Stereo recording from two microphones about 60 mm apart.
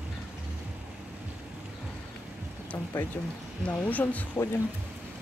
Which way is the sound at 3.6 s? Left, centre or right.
Left.